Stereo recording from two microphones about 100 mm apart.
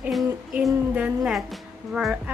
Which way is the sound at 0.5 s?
5° right (ahead or behind).